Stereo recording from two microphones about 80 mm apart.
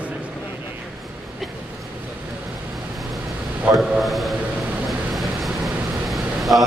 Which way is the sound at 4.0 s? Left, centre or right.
Centre.